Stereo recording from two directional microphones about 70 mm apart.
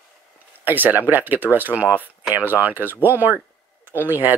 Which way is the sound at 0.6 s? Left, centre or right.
Right.